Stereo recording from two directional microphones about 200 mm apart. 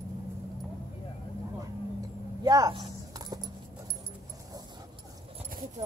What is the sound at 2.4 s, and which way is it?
Keys jangling, 20° right (ahead or behind).